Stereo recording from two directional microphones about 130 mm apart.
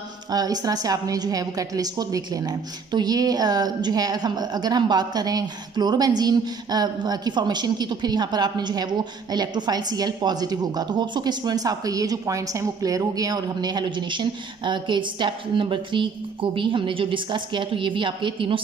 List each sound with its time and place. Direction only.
0.3 s a woman's voice: 30° right (ahead or behind)